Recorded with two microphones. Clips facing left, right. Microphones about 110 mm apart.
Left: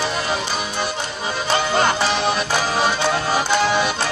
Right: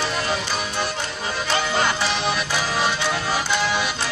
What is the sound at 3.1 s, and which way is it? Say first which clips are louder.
Music: left 4 dB; 40° left (ahead or behind).